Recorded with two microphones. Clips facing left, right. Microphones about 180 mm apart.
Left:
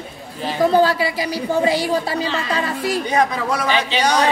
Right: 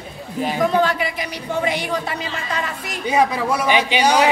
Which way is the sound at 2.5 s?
30° left (ahead or behind).